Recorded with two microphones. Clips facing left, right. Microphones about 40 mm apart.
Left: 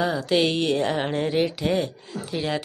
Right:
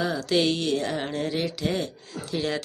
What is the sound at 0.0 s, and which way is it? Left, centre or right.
A woman's voice, centre.